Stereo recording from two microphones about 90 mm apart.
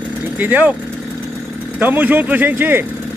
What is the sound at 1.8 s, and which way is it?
Speech, 20° right (ahead or behind).